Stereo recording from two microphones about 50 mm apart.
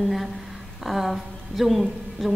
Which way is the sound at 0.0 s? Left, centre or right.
Centre.